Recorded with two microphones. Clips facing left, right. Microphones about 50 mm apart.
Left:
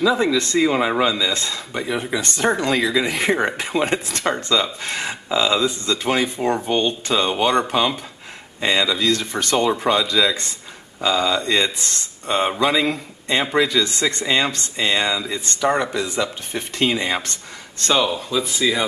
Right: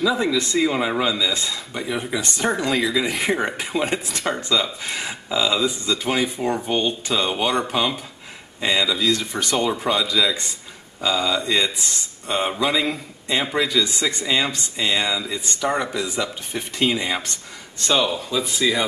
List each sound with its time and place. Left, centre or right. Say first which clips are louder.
0.0 s speech: left 2 dB; centre
1.3 s speech: left 1 dB; centre
1.7 s speech: left 4 dB; centre
2.1 s speech: left 2 dB; centre
2.4 s speech: left 2 dB; centre
9.7 s speech: left 3 dB; centre
13.7 s speech: left 1 dB; centre
14.2 s speech: left 2 dB; centre